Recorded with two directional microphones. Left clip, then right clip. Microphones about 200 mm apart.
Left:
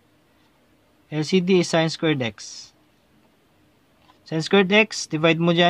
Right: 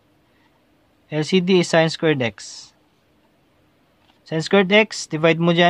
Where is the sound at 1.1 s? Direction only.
20° right (ahead or behind).